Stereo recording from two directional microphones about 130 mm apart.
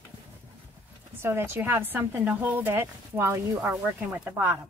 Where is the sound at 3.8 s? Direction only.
10° right (ahead or behind).